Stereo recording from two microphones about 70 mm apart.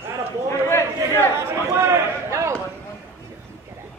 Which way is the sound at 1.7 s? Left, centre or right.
Right.